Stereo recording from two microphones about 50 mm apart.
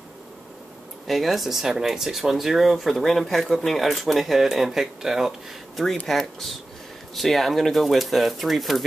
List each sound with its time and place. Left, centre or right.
1.0 s speech: centre
6.0 s speech: centre